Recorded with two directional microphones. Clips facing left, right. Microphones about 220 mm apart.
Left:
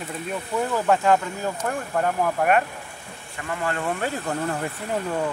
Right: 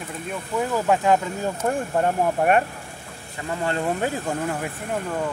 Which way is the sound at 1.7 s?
30° right (ahead or behind).